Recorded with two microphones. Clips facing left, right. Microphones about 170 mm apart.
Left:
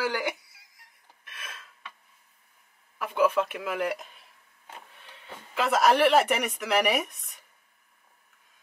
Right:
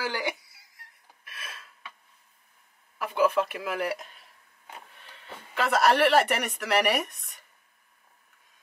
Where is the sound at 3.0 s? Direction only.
5° right (ahead or behind).